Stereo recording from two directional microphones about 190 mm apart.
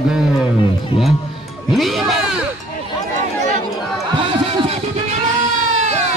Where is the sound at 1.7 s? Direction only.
Centre (ahead or behind).